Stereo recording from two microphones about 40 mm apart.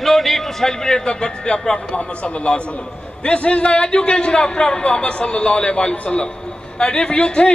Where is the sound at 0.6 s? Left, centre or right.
Centre.